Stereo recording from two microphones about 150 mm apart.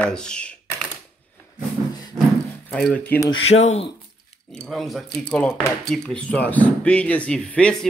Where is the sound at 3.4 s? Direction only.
45° left (ahead or behind).